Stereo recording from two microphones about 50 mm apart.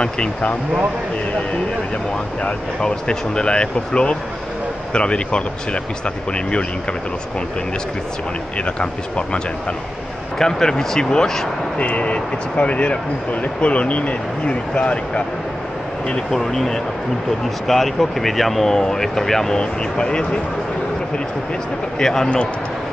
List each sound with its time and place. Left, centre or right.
0.0 s speech: left
2.4 s speech: centre
8.5 s speech: left
10.4 s speech: centre
11.8 s speech: left
16.3 s speech: centre
19.6 s speech: centre
21.9 s speech: centre